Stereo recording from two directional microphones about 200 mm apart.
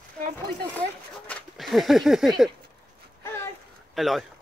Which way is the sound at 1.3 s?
Centre (ahead or behind).